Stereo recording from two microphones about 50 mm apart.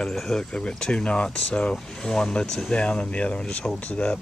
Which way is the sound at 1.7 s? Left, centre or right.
Centre.